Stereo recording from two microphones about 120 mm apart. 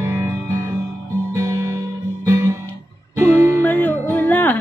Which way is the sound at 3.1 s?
20° right (ahead or behind).